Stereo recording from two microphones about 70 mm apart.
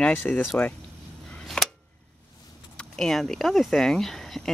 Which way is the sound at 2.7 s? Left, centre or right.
Centre.